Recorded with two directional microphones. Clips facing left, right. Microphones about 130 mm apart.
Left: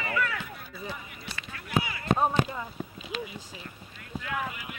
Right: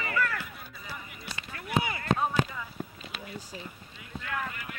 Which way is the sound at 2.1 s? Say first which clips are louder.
Left 3 dB; 35° left (ahead or behind).